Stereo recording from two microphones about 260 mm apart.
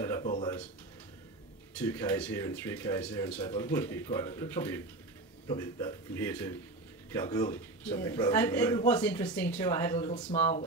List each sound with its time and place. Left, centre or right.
0.0 s a sound: centre
1.8 s a man's voice: centre
9.9 s speech: left